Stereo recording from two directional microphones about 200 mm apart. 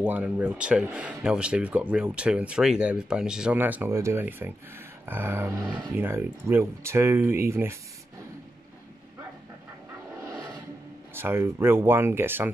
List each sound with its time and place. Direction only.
0.0 s speech: 5° right (ahead or behind)
10.1 s roar: 15° right (ahead or behind)
11.1 s speech: 10° right (ahead or behind)